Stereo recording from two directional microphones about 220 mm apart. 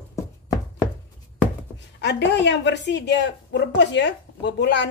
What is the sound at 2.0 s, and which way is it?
A woman's voice, 50° left (ahead or behind).